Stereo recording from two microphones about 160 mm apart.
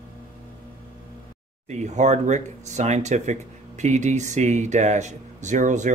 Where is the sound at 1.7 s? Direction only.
45° right (ahead or behind).